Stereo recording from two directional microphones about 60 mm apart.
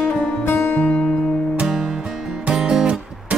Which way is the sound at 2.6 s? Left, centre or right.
Centre.